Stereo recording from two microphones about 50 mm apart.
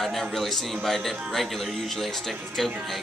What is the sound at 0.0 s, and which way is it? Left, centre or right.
Speech, centre.